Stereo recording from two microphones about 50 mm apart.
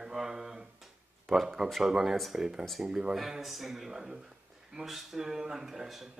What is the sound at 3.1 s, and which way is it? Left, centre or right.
A man's voice, centre.